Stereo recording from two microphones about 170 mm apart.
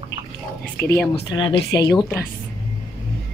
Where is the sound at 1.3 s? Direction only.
25° left (ahead or behind).